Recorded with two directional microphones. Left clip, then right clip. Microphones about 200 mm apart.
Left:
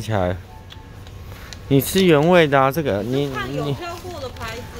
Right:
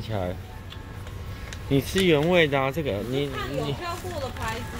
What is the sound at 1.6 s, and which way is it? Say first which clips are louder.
Speech: left 6 dB; 45° left (ahead or behind).